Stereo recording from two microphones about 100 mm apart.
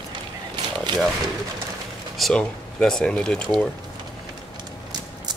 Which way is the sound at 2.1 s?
5° left (ahead or behind).